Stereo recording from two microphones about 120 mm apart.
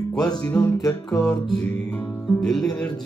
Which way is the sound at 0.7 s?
30° left (ahead or behind).